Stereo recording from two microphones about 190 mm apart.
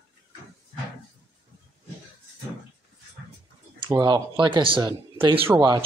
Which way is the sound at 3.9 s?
20° right (ahead or behind).